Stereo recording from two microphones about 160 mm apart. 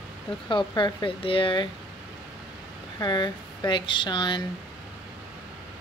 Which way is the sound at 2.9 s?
25° left (ahead or behind).